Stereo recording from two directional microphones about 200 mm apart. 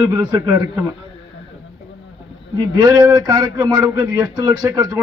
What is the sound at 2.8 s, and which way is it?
Speech, 20° right (ahead or behind).